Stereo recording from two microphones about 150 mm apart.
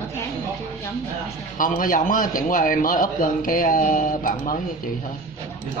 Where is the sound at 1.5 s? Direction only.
60° left (ahead or behind).